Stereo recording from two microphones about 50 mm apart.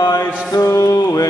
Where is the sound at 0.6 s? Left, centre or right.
Left.